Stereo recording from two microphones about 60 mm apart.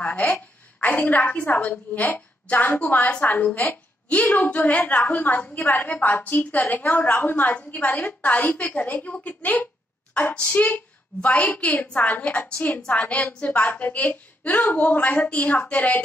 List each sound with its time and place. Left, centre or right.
0.0 s a woman's voice: left
11.1 s a woman's voice: centre
11.5 s a woman's voice: left